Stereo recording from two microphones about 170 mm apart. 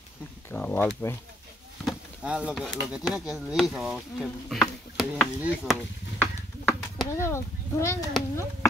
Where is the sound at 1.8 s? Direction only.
5° right (ahead or behind).